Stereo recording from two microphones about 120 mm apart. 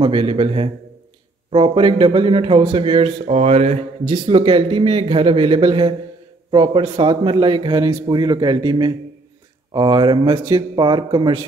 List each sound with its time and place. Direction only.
0.0 s a man's voice: 45° right (ahead or behind); by 3.8 s 70° right (ahead or behind)
4.1 s a man's voice: 40° right (ahead or behind)